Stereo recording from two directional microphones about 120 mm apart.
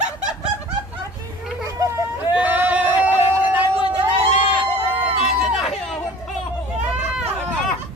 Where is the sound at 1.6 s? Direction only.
30° right (ahead or behind).